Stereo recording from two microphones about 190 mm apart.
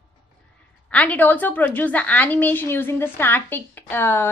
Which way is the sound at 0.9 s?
5° left (ahead or behind).